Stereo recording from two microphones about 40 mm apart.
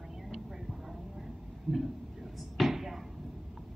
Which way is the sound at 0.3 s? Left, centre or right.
Centre.